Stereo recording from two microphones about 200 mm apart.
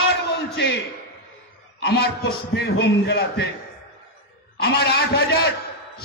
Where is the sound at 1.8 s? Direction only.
50° left (ahead or behind).